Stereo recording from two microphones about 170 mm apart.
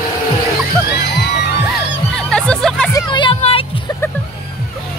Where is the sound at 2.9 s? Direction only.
25° left (ahead or behind).